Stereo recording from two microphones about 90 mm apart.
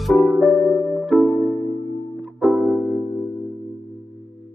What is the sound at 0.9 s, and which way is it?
Music, centre (ahead or behind).